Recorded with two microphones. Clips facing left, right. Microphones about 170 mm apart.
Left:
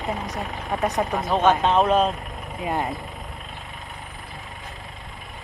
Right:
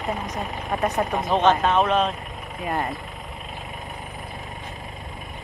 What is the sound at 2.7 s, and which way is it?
Speech, centre (ahead or behind).